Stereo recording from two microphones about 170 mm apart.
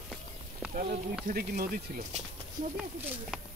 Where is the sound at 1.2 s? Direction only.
55° right (ahead or behind).